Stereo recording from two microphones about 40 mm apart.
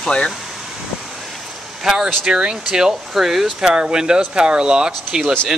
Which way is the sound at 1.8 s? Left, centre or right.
Centre.